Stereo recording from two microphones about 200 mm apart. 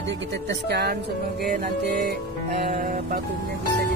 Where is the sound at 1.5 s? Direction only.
50° right (ahead or behind).